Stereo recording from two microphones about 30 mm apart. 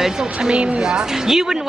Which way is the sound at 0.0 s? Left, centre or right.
Right.